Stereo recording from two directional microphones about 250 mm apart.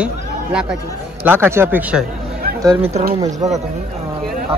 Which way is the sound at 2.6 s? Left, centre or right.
Centre.